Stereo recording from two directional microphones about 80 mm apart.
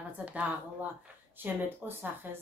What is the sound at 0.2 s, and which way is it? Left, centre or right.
Speech, centre.